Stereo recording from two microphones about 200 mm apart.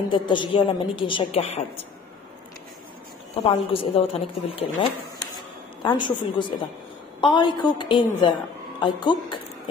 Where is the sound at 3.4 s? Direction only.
30° left (ahead or behind).